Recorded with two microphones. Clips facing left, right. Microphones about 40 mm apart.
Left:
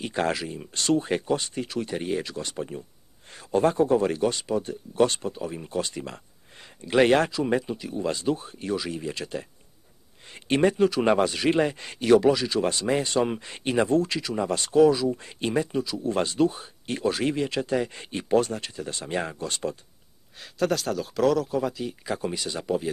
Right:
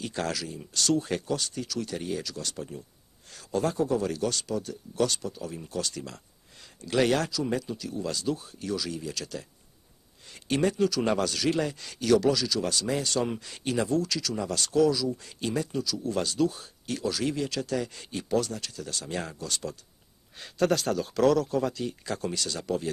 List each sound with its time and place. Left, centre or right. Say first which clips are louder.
0.0 s speech: left 5 dB; left
20.3 s speech: even; centre